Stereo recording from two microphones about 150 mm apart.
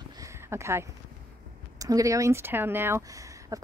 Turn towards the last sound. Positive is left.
turn(degrees=-20)  # may be behind; listen again after turning